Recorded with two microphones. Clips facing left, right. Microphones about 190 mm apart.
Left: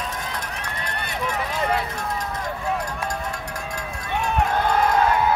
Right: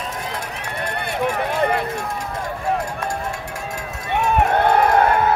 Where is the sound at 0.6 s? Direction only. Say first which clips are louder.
Right 5 dB; 10° right (ahead or behind).